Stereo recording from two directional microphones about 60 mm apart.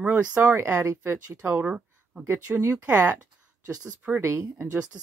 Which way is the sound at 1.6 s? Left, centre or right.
Centre.